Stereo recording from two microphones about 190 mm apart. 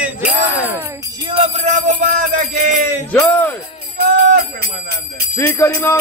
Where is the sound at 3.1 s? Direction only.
10° left (ahead or behind).